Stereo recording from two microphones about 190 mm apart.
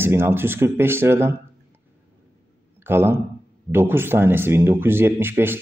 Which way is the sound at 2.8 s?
10° right (ahead or behind).